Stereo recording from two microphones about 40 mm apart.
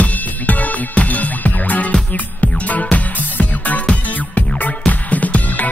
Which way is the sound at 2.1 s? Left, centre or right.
Left.